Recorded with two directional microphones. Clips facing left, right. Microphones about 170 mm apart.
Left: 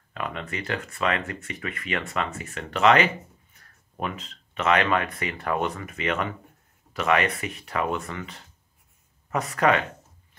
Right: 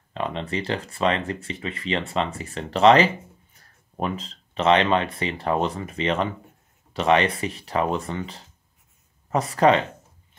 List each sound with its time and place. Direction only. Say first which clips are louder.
0.1 s speech: right 5 dB; 25° right (ahead or behind)